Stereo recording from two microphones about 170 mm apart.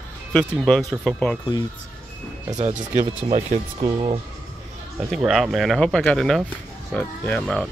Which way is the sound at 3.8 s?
30° right (ahead or behind).